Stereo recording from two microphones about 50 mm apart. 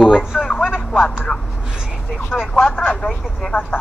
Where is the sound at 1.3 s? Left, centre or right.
Centre.